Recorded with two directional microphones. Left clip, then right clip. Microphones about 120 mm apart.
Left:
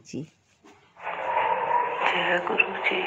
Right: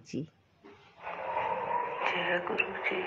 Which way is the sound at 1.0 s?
30° left (ahead or behind).